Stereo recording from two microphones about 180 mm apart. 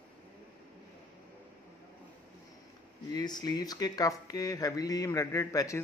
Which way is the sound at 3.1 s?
20° left (ahead or behind).